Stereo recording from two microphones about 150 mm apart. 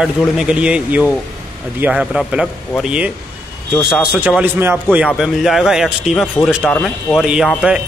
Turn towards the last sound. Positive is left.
turn(degrees=0)  # may be behind; listen again after turning